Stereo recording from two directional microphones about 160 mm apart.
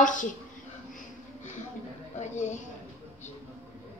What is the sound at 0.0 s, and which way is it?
Speech, 55° left (ahead or behind).